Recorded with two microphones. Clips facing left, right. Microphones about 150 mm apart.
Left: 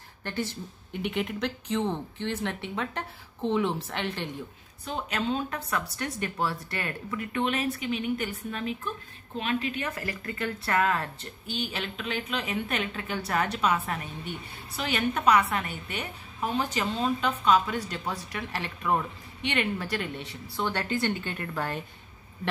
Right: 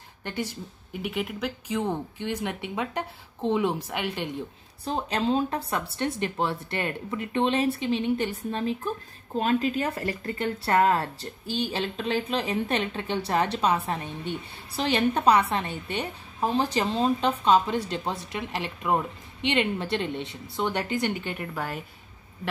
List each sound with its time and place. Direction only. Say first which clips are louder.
0.2 s speech: even; 15° right (ahead or behind)
4.8 s speech: right 4 dB; 35° right (ahead or behind); by 21.8 s 10° right (ahead or behind)